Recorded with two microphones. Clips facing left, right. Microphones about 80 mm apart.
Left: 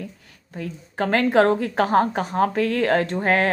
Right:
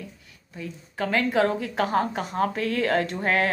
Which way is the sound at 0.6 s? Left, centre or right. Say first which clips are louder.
Left 4 dB; left.